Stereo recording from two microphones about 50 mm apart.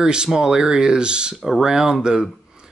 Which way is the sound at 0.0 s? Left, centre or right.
Centre.